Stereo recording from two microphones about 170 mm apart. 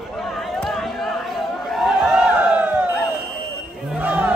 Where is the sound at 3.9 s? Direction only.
10° right (ahead or behind).